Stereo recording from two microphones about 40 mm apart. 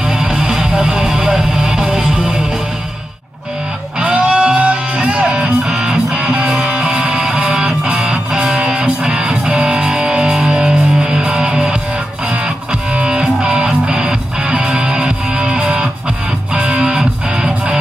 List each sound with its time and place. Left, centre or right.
0.1 s music: centre
4.0 s music: right
5.2 s music: centre
5.8 s music: right
7.2 s music: centre
8.5 s music: right
12.9 s music: right
14.6 s music: right